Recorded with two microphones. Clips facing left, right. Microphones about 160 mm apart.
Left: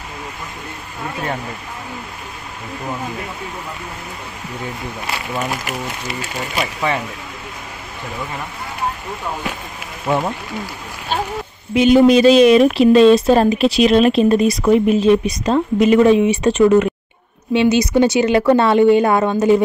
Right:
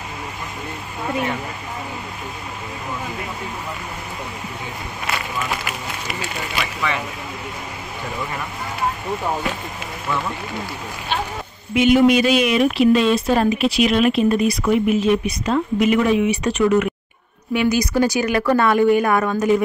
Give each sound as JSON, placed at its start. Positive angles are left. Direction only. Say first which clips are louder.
{"t": 6.5, "sound": "speech", "louder": "left 5 dB", "side_deg": 40}
{"t": 10.0, "sound": "speech", "louder": "left 6 dB", "side_deg": 45}
{"t": 11.7, "sound": "a woman's voice", "louder": "left 3 dB", "side_deg": 35}